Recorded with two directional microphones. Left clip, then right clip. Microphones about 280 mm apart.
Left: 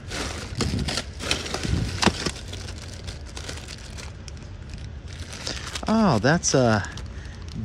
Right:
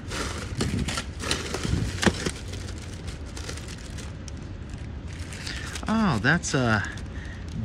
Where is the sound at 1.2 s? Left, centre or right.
Centre.